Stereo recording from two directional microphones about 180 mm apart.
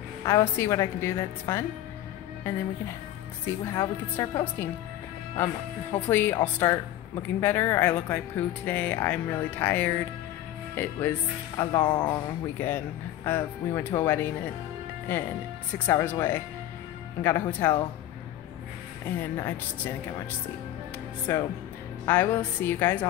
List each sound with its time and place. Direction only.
0.2 s speech: 15° left (ahead or behind)
5.9 s speech: 10° left (ahead or behind)
12.5 s speech: 10° left (ahead or behind)
15.9 s speech: 15° left (ahead or behind)
19.3 s speech: 15° left (ahead or behind)
21.3 s speech: 15° left (ahead or behind)